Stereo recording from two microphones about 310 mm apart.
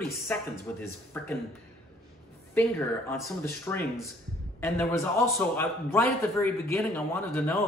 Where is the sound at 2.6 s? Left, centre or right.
Centre.